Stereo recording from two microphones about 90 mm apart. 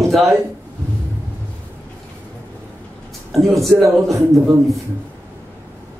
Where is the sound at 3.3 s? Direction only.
Centre (ahead or behind).